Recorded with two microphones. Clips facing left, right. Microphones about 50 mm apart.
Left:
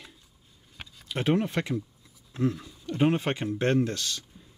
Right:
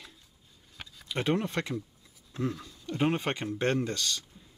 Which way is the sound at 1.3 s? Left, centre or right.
Centre.